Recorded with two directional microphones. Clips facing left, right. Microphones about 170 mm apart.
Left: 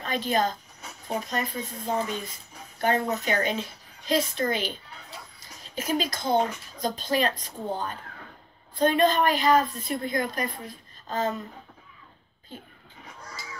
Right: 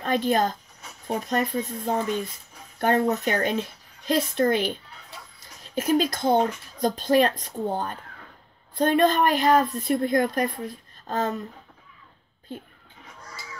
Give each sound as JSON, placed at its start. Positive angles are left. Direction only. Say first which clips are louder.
{"t": 0.0, "sound": "speech", "louder": "right 3 dB", "side_deg": -55}
{"t": 5.8, "sound": "speech", "louder": "right 6 dB", "side_deg": -60}